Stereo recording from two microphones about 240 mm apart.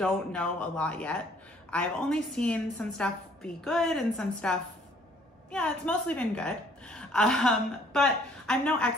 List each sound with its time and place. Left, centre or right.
0.0 s a woman's voice: centre